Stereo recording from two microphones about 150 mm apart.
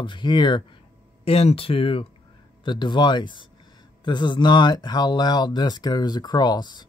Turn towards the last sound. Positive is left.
turn(degrees=30)  # may be behind; listen again after turning